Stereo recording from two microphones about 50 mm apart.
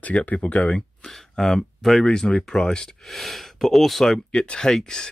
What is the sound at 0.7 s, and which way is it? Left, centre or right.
Speech, centre.